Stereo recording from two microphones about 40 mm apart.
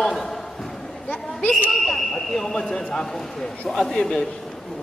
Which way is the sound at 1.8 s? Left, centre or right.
Centre.